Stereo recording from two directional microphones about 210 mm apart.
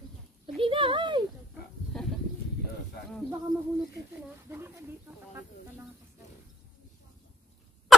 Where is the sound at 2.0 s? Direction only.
5° left (ahead or behind).